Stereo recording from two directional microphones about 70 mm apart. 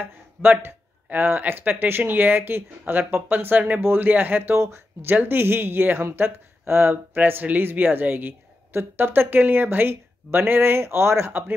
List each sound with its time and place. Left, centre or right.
0.0 s speech: right